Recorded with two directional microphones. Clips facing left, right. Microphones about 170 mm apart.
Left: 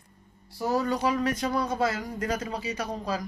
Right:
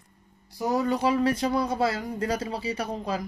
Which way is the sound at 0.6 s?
25° right (ahead or behind).